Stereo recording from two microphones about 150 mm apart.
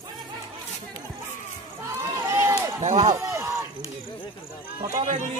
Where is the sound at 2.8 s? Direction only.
50° right (ahead or behind).